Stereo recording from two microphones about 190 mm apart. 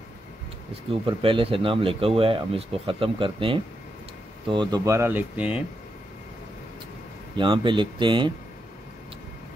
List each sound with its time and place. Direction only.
1.0 s speech: 25° right (ahead or behind); by 5.6 s 5° right (ahead or behind)
7.3 s speech: 25° right (ahead or behind)